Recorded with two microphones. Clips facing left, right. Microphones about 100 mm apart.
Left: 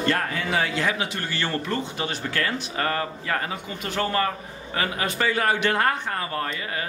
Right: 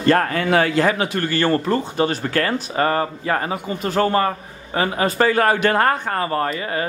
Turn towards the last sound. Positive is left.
turn(degrees=-50)  # may be behind; listen again after turning